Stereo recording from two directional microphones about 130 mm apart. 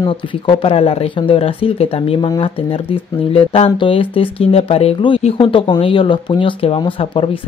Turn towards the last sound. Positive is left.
turn(degrees=45)  # may be behind; listen again after turning